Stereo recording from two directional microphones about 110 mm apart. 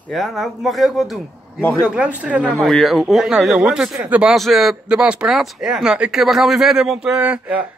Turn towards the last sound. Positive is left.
turn(degrees=-10)  # may be behind; listen again after turning